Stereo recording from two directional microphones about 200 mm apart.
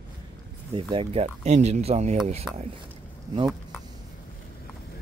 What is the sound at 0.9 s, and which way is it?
Speech, 30° right (ahead or behind).